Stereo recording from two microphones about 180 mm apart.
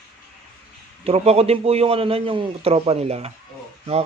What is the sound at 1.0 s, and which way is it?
Speech, 35° right (ahead or behind).